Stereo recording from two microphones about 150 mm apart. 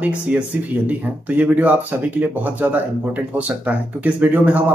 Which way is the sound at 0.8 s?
10° right (ahead or behind).